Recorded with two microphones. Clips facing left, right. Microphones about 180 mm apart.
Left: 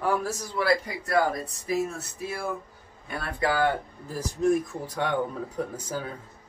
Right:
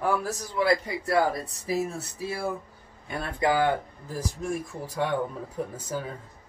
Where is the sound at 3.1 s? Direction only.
20° right (ahead or behind).